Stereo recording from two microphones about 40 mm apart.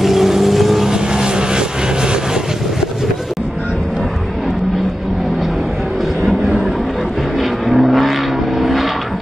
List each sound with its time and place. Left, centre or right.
0.0 s vehicle: centre
0.8 s vehicle: centre
7.3 s vehicle: centre